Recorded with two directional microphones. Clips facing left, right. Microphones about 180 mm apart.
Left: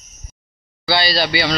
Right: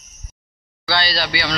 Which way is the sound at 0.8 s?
10° left (ahead or behind).